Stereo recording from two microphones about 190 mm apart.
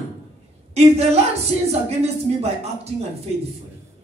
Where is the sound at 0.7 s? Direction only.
35° right (ahead or behind).